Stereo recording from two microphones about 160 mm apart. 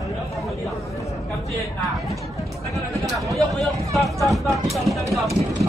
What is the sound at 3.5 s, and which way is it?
Speech, centre (ahead or behind).